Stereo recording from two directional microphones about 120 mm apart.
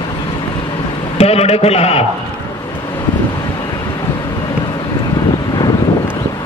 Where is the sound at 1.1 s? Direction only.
60° left (ahead or behind).